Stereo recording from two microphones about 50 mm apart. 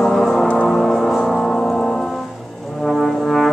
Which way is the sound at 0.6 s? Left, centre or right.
Centre.